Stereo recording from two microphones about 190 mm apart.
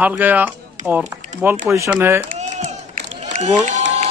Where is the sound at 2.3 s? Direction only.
40° right (ahead or behind).